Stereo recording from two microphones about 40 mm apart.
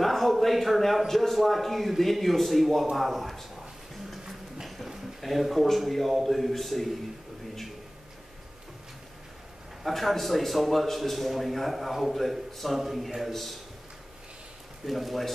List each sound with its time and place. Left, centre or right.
0.0 s a man's voice: centre
4.1 s a sound: centre
5.2 s a man's voice: centre
9.8 s a man's voice: centre
14.9 s a man's voice: centre